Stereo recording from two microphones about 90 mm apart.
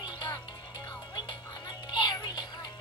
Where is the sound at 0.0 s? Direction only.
50° left (ahead or behind).